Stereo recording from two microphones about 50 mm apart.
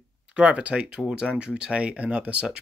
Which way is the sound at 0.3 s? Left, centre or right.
Right.